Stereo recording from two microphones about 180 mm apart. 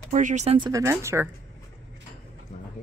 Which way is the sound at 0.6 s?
20° right (ahead or behind).